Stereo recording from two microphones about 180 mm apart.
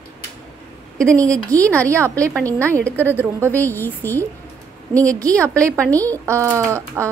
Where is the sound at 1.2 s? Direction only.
20° right (ahead or behind).